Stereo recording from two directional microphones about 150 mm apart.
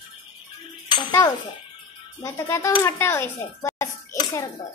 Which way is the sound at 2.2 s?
20° left (ahead or behind).